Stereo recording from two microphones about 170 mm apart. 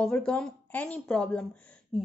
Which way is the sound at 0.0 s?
5° left (ahead or behind).